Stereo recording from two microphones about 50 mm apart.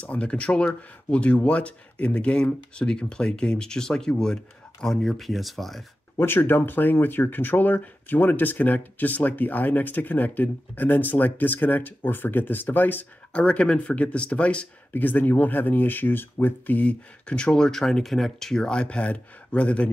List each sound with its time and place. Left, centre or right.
0.0 s speech: left; by 5.9 s centre
6.1 s speech: left
13.3 s speech: left
15.0 s speech: left
17.4 s speech: centre